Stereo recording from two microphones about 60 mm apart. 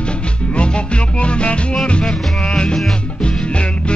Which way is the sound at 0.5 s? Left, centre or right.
Centre.